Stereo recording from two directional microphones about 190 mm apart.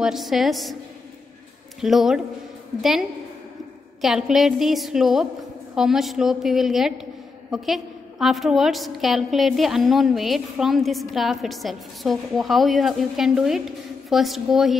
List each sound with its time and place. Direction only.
0.0 s a woman's voice: centre (ahead or behind)
1.8 s a woman's voice: centre (ahead or behind)